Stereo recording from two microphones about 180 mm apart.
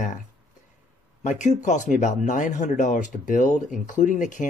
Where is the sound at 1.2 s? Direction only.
40° left (ahead or behind).